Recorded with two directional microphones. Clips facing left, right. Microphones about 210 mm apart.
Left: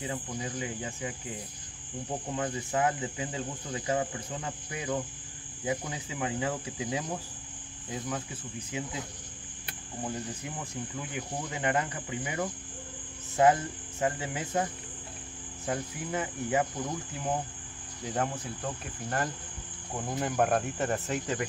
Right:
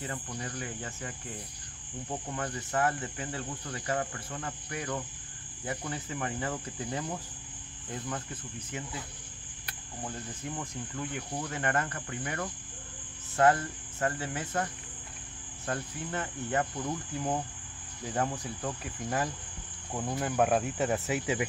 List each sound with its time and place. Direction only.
0.0 s cricket: 15° left (ahead or behind)
2.3 s cricket: 15° left (ahead or behind)
10.0 s cricket: 10° left (ahead or behind)
18.0 s speech: centre (ahead or behind)